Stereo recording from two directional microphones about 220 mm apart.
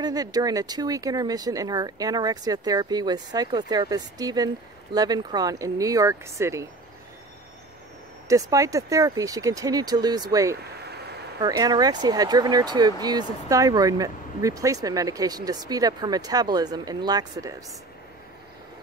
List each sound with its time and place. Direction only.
0.0 s speech: 15° right (ahead or behind)
8.3 s speech: 15° right (ahead or behind)